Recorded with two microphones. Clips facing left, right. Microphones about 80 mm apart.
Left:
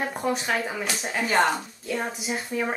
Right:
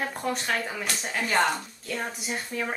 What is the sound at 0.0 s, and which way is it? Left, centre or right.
Speech, centre.